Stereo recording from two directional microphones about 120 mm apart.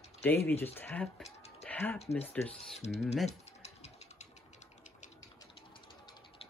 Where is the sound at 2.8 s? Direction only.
65° left (ahead or behind).